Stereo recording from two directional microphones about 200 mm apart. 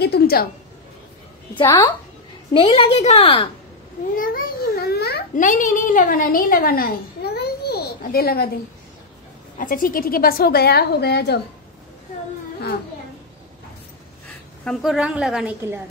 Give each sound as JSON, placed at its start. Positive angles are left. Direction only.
{"t": 0.0, "sound": "a woman's voice", "side_deg": 50}
{"t": 1.6, "sound": "a woman's voice", "side_deg": 25}
{"t": 4.1, "sound": "a sound", "side_deg": 45}
{"t": 5.4, "sound": "a woman's voice", "side_deg": 40}
{"t": 9.6, "sound": "a woman's voice", "side_deg": 45}
{"t": 14.6, "sound": "a woman's voice", "side_deg": 0}